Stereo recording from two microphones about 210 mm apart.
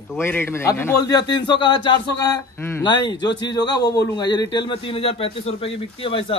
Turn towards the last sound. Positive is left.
turn(degrees=25)  # may be behind; listen again after turning